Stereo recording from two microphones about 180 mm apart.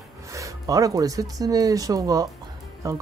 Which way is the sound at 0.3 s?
15° right (ahead or behind).